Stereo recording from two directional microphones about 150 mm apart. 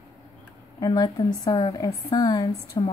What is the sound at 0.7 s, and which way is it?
A woman's voice, 25° left (ahead or behind).